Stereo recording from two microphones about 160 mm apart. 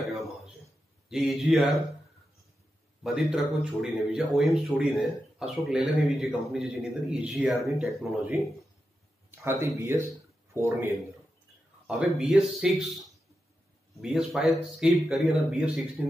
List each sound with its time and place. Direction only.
1.0 s speech: centre (ahead or behind)
3.0 s speech: 5° right (ahead or behind)
11.9 s speech: 5° right (ahead or behind)
14.0 s speech: 5° right (ahead or behind)